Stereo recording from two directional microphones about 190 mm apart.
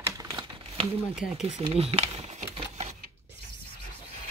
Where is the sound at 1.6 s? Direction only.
30° right (ahead or behind).